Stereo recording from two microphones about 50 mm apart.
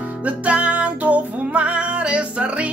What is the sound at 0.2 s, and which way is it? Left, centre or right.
Music, right.